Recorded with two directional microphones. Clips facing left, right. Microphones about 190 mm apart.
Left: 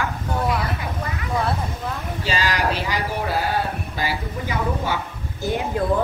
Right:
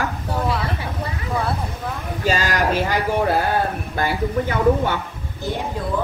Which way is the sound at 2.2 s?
45° right (ahead or behind).